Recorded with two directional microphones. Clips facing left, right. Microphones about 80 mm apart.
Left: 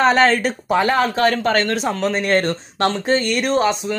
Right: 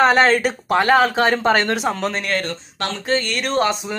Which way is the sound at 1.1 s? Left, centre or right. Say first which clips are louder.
Even; centre.